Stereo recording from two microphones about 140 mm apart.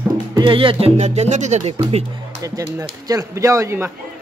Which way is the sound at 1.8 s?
40° right (ahead or behind).